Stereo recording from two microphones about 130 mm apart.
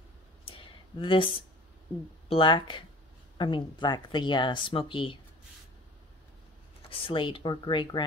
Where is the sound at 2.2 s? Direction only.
40° left (ahead or behind).